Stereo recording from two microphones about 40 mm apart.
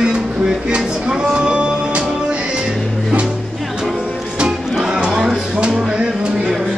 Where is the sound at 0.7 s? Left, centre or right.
Right.